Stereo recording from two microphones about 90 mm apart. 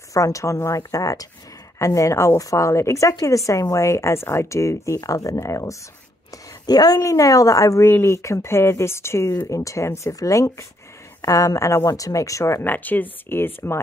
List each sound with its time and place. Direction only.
0.1 s a woman's voice: 35° left (ahead or behind)
6.6 s a woman's voice: 50° left (ahead or behind); by 9.3 s 30° left (ahead or behind)
9.3 s a woman's voice: 40° left (ahead or behind); by 13.7 s 25° left (ahead or behind)